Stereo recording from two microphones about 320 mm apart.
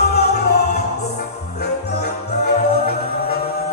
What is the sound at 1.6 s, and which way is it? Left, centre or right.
Music, left.